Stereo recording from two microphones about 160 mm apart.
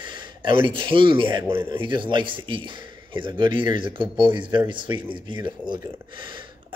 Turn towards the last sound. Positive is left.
turn(degrees=-30)  # may be behind; listen again after turning